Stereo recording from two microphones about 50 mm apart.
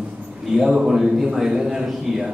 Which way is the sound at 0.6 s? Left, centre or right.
Centre.